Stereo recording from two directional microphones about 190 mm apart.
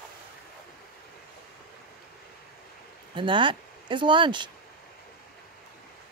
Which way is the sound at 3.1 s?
25° right (ahead or behind).